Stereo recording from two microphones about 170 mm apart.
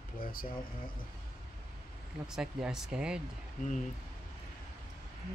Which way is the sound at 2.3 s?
5° right (ahead or behind).